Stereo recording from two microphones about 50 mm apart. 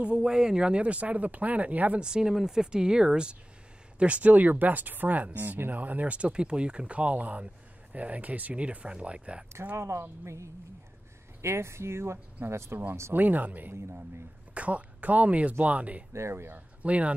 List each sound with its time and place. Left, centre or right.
0.0 s speech: centre
2.0 s speech: centre
4.0 s speech: right
9.8 s speech: right
10.2 s speech: right
11.4 s speech: right
13.1 s speech: right
14.5 s speech: right
16.1 s speech: right
16.5 s speech: right